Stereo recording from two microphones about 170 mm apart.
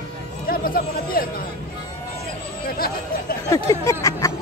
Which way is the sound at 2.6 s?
60° left (ahead or behind).